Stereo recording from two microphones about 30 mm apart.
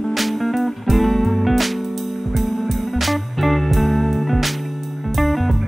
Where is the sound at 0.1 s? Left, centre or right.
Centre.